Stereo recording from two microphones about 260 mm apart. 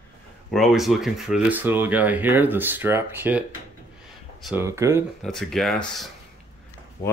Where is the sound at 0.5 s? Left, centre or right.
Centre.